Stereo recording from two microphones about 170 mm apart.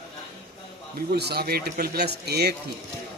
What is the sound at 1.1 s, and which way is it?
Speech, 70° right (ahead or behind).